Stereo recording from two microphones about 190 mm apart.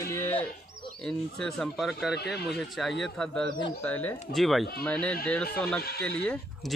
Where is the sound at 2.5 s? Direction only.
Centre (ahead or behind).